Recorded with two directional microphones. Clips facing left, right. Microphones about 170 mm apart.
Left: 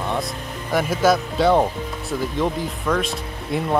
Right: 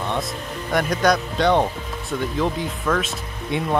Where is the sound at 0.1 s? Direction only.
5° left (ahead or behind).